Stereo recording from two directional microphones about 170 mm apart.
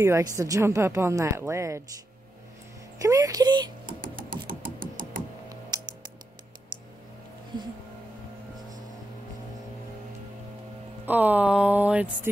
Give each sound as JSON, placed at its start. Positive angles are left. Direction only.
{"t": 0.0, "sound": "speech", "side_deg": -20}
{"t": 3.0, "sound": "speech", "side_deg": -20}
{"t": 3.8, "sound": "typing", "side_deg": -55}
{"t": 4.5, "sound": "a sound", "side_deg": -50}
{"t": 5.7, "sound": "music", "side_deg": -25}
{"t": 11.1, "sound": "speech", "side_deg": -10}